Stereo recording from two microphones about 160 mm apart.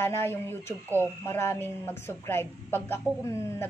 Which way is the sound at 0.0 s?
15° left (ahead or behind).